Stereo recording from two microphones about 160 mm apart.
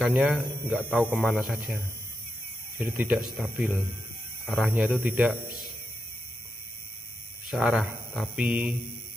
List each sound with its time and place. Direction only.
0.0 s speech: 10° right (ahead or behind)
2.8 s speech: 10° right (ahead or behind)
7.4 s speech: 5° right (ahead or behind)